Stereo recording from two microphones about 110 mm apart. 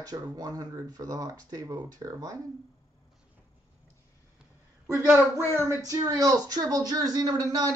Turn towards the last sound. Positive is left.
turn(degrees=-35)  # may be behind; listen again after turning